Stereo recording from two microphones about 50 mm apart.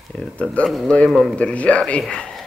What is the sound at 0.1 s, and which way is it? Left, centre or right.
Speech, centre.